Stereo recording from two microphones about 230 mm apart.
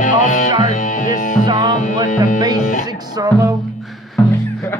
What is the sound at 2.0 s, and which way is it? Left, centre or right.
Music, left.